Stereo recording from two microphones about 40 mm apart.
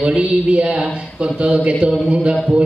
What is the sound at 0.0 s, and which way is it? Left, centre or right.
Speech, right.